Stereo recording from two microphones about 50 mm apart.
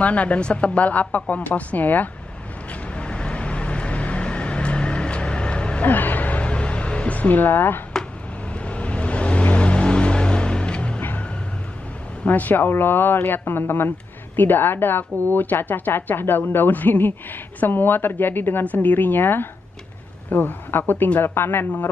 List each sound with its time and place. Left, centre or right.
0.0 s a woman's voice: left
2.7 s vehicle: left
5.9 s a sound: left
8.5 s vehicle: left
11.0 s vehicle: left
12.3 s speech: left
18.6 s a man's voice: left